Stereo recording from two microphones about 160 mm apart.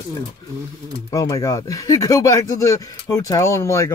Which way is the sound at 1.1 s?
20° left (ahead or behind).